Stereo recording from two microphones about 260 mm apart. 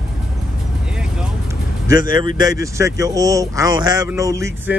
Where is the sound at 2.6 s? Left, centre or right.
Centre.